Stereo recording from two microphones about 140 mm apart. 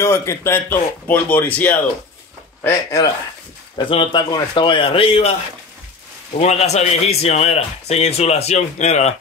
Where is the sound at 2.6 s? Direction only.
25° left (ahead or behind).